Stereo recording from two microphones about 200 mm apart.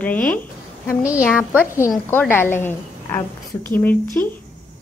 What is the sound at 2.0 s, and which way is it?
A woman's voice, 10° left (ahead or behind).